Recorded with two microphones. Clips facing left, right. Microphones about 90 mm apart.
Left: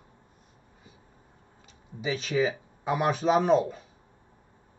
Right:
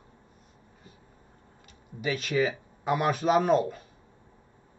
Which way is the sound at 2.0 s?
60° right (ahead or behind).